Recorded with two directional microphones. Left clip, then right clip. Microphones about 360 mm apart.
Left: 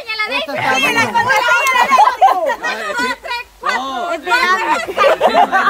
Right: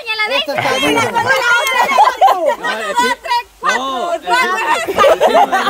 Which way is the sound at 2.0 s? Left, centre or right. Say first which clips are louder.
Right 3 dB; right.